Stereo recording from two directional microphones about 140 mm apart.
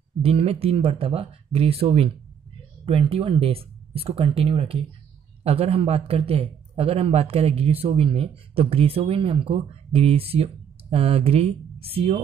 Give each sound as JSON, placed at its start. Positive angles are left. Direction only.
{"t": 0.2, "sound": "a man's voice", "side_deg": -45}